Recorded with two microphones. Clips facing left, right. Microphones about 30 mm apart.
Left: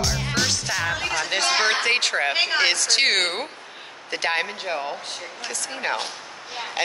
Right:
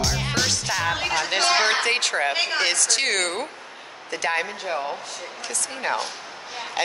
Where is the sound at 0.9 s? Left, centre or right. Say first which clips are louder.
Right 1 dB; centre; by 4.4 s left.